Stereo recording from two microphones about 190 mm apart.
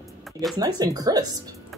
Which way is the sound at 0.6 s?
20° right (ahead or behind).